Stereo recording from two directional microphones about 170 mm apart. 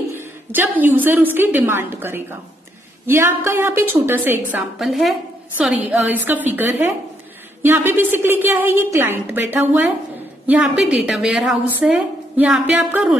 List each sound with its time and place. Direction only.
0.1 s a woman's voice: 15° right (ahead or behind)